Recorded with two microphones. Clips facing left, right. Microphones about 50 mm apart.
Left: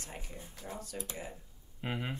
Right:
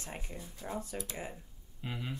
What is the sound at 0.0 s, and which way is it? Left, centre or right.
Speech, right.